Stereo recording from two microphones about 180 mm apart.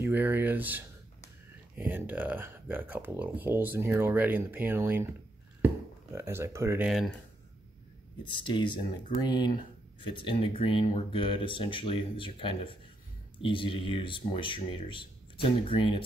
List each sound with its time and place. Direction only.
0.0 s speech: 10° right (ahead or behind)
6.1 s speech: 15° right (ahead or behind)
8.3 s speech: 25° left (ahead or behind)